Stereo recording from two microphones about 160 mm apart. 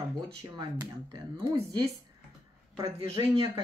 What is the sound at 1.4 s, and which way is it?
Speech, 25° right (ahead or behind).